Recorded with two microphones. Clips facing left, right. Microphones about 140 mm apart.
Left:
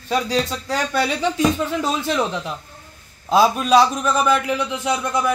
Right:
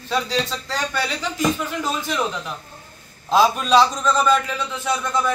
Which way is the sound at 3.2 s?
10° left (ahead or behind).